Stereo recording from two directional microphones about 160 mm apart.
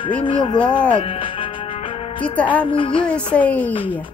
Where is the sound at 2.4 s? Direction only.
10° left (ahead or behind).